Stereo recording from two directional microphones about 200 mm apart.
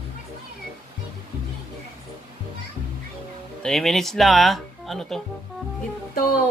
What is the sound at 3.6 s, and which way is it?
Speech, centre (ahead or behind).